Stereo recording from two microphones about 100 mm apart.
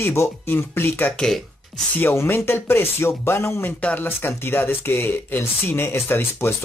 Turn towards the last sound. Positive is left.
turn(degrees=25)  # may be behind; listen again after turning